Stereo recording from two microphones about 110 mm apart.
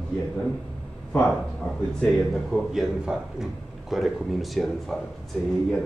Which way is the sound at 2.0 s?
5° left (ahead or behind).